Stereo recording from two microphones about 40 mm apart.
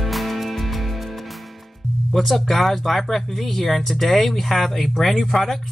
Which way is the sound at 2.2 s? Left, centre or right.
Centre.